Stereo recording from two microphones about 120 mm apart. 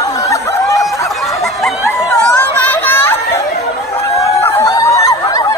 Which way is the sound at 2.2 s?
15° left (ahead or behind).